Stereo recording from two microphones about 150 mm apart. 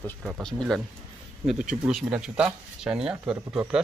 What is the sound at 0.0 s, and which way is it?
A man's voice, 10° left (ahead or behind).